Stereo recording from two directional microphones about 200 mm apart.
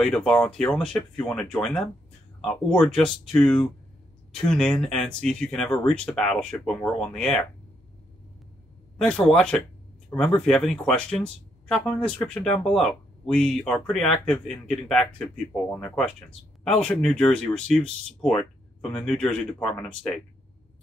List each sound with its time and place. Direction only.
0.0 s speech: 5° left (ahead or behind)
8.9 s speech: 5° left (ahead or behind)